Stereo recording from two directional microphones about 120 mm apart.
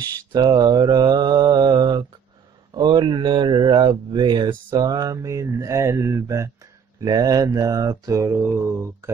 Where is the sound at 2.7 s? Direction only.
35° right (ahead or behind).